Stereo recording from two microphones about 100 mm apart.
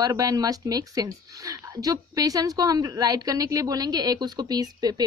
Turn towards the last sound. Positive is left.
turn(degrees=-40)  # may be behind; listen again after turning